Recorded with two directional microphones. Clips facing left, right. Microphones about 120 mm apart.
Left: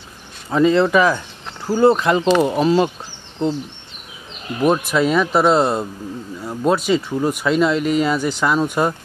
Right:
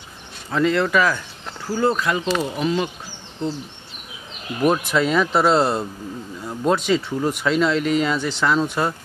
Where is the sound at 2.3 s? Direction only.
50° left (ahead or behind).